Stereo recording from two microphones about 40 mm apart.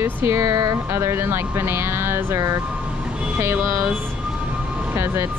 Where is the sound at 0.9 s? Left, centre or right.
Right.